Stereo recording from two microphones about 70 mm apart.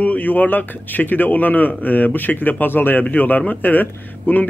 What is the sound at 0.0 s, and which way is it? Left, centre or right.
A man's voice, left.